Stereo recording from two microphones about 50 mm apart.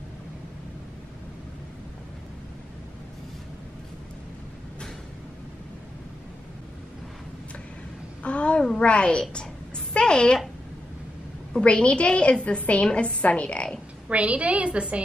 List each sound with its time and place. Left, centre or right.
8.2 s babbling: left
9.9 s speech: centre
11.6 s a woman's voice: left
14.0 s a woman's voice: right